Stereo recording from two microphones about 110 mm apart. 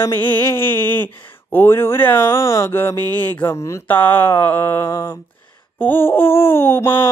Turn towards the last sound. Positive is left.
turn(degrees=20)  # may be behind; listen again after turning